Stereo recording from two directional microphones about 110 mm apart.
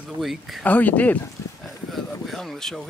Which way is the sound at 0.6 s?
15° left (ahead or behind).